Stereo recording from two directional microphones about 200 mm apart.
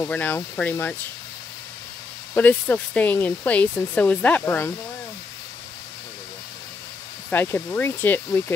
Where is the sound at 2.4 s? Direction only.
10° left (ahead or behind).